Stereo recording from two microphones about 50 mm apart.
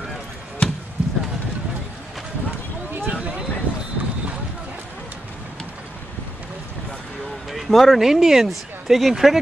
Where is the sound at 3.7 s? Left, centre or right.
Right.